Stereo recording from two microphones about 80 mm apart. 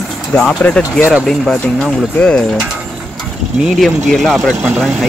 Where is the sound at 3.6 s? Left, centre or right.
Centre.